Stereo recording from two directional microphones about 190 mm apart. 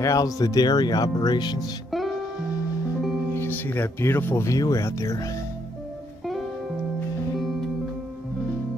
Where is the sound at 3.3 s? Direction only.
10° left (ahead or behind).